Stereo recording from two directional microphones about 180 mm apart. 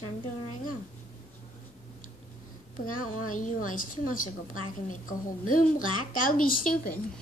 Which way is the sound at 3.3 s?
50° left (ahead or behind).